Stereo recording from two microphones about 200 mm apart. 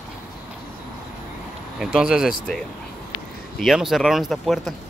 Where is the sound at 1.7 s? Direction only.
5° right (ahead or behind).